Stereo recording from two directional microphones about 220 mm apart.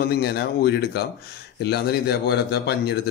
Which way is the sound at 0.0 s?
45° left (ahead or behind).